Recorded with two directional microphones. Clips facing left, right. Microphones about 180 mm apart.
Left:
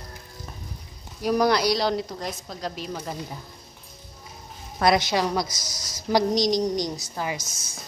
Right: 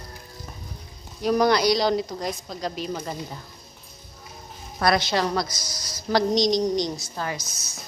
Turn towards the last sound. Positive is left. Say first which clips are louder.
# even
turn(degrees=50)  # may be behind; listen again after turning